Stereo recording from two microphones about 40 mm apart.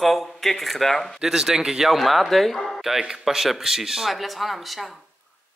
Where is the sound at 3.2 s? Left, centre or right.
Centre.